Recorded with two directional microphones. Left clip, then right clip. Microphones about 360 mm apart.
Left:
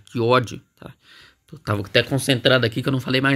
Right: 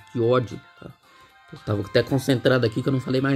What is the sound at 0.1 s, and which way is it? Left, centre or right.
Speech, centre.